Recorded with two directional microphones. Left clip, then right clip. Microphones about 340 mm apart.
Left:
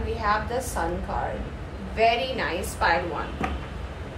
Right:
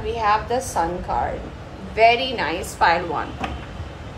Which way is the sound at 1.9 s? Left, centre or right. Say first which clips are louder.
Right 6 dB; right.